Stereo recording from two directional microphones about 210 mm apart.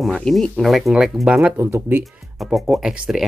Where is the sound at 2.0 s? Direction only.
Centre (ahead or behind).